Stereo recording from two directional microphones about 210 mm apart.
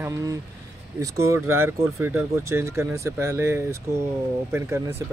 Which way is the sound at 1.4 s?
90° right.